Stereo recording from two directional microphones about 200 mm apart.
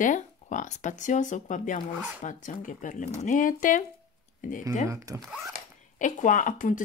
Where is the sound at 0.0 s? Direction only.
40° left (ahead or behind).